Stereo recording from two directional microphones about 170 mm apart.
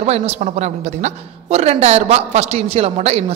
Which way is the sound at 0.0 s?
40° right (ahead or behind).